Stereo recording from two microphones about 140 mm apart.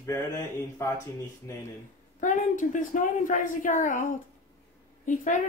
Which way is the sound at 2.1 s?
70° left (ahead or behind).